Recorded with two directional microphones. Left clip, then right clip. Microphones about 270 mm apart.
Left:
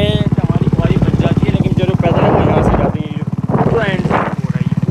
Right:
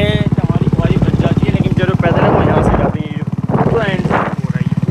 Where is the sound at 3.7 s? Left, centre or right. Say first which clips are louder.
Even; centre.